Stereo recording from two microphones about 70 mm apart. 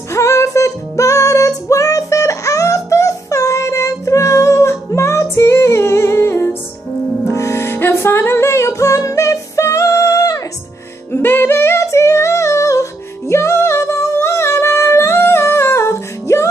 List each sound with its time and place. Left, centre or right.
0.1 s music: left
11.1 s music: left
13.3 s singing: left